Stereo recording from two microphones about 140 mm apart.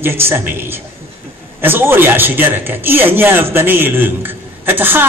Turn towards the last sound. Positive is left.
turn(degrees=-15)  # may be behind; listen again after turning